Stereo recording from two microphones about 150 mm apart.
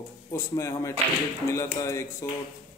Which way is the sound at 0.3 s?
20° left (ahead or behind).